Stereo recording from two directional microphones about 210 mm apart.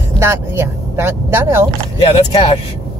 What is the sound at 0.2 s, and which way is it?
Speech, 10° right (ahead or behind).